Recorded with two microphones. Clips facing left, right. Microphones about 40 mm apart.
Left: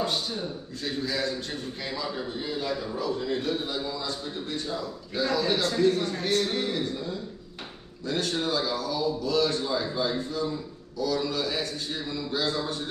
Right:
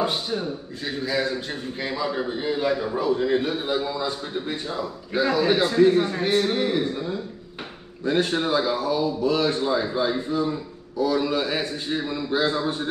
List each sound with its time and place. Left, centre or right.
0.0 s a man's voice: right